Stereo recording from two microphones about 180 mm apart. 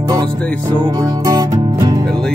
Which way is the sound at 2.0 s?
Centre (ahead or behind).